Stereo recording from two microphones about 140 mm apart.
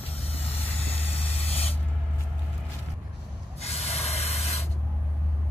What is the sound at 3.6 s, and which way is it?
Rub, 50° left (ahead or behind).